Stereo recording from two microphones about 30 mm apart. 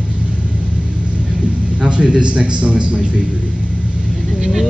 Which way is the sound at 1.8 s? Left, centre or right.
Right.